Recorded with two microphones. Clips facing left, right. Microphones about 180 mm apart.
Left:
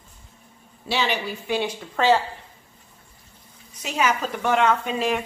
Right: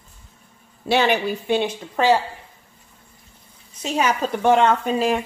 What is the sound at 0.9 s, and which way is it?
Speech, 55° right (ahead or behind).